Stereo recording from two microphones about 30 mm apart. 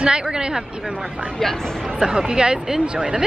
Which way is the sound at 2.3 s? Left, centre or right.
Right.